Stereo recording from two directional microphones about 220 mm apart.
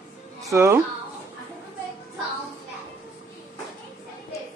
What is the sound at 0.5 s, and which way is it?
Cutlery, 15° right (ahead or behind).